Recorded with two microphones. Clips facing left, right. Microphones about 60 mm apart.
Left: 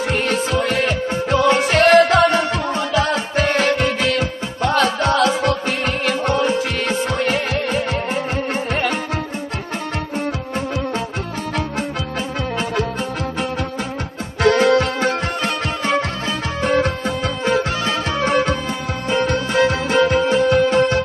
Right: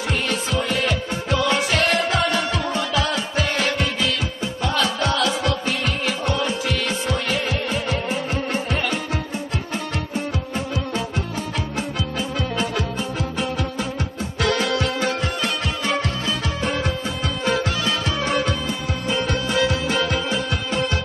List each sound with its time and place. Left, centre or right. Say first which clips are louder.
0.1 s music: left 3 dB; left
1.9 s music: left 9 dB; left
2.2 s music: left 5 dB; left
14.4 s music: left 7 dB; left
16.6 s music: left 8 dB; left
17.5 s music: left 3 dB; left